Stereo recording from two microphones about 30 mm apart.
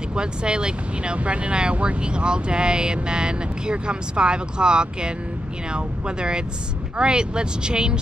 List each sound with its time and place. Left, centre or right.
0.1 s speech: right
1.1 s speech: right